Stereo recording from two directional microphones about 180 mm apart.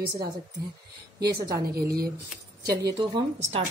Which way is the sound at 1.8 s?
60° right (ahead or behind).